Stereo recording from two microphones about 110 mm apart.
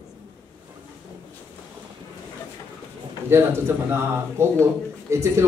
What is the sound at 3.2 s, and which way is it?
A man's voice, 25° right (ahead or behind).